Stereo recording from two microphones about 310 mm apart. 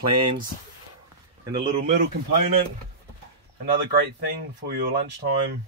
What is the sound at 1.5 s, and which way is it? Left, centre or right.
Speech, right.